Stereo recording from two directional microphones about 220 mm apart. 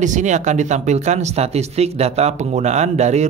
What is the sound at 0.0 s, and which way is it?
Speech, 35° right (ahead or behind).